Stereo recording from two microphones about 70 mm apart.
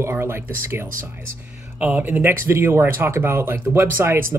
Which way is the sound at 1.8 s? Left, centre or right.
Right.